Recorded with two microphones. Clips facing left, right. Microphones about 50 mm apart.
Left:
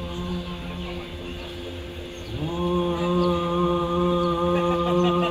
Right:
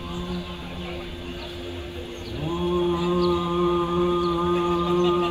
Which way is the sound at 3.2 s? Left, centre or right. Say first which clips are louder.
Left 1 dB; left.